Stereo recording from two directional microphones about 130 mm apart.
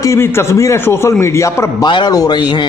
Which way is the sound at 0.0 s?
20° left (ahead or behind).